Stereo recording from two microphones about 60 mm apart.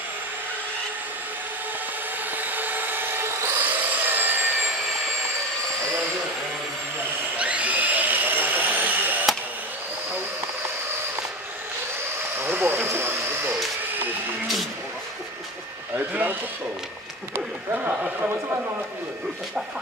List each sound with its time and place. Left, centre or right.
2.3 s tools: right
3.5 s vehicle: right
7.3 s drill: right
12.4 s a sound: right
16.1 s a sound: right
18.2 s speech: right